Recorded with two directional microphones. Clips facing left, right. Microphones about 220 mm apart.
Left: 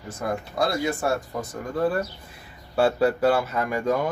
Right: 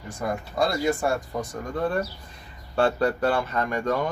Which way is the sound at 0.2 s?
Centre (ahead or behind).